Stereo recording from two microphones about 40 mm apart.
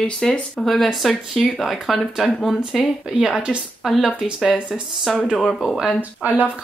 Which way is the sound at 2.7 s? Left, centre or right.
Centre.